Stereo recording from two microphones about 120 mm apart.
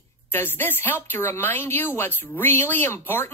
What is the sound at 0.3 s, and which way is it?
Speech, 20° left (ahead or behind).